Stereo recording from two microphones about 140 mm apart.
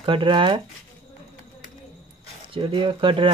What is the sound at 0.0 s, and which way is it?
Speech, 35° right (ahead or behind).